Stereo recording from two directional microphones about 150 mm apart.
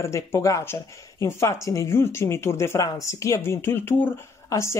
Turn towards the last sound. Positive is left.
turn(degrees=20)  # may be behind; listen again after turning